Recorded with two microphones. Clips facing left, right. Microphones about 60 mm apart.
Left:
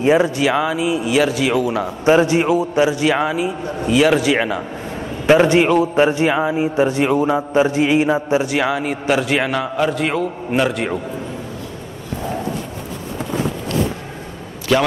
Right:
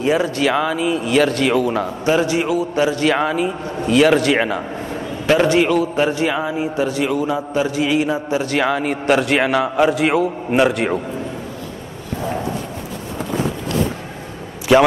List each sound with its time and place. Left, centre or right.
0.0 s a man's voice: left
0.4 s speech: centre
2.0 s a man's voice: left; by 4.6 s centre
5.2 s a man's voice: left
8.5 s a man's voice: centre
14.7 s speech: centre